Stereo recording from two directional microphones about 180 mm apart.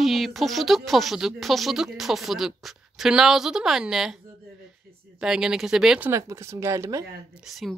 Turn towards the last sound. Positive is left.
turn(degrees=0)  # may be behind; listen again after turning